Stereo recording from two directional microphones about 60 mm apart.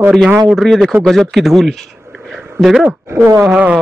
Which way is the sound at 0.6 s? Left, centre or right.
Centre.